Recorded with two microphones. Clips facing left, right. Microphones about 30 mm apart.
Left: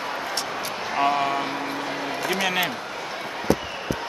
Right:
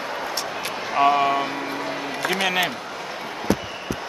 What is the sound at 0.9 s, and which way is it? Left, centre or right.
Speech, centre.